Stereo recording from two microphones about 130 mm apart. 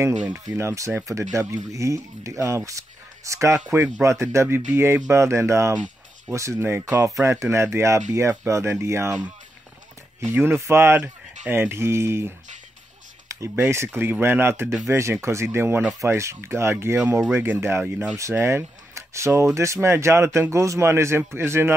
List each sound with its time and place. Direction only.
0.5 s speech: 25° right (ahead or behind)
10.3 s speech: 15° right (ahead or behind)